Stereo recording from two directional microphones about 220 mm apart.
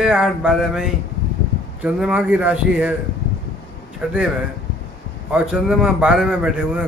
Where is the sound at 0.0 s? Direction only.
5° right (ahead or behind).